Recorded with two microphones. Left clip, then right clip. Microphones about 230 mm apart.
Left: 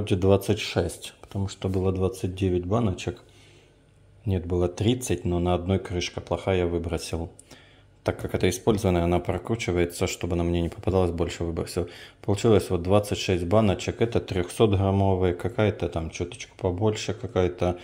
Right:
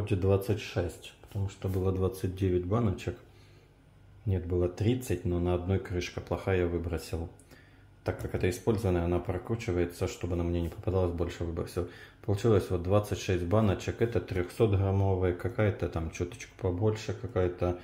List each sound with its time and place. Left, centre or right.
0.0 s speech: left
1.8 s speech: left
4.3 s speech: left